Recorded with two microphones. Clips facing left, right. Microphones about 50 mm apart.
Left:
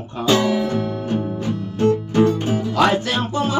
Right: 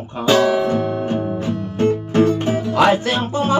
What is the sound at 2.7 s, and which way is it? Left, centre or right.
Music, centre.